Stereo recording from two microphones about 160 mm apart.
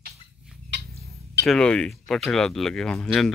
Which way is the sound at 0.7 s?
90° right.